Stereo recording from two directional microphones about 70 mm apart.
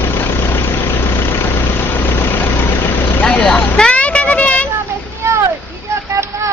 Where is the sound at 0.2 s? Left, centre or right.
Left.